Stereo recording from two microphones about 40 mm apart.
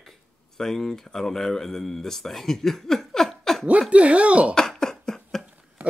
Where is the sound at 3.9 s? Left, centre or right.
Right.